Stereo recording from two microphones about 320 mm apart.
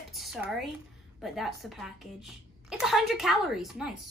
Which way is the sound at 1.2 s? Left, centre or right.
Centre.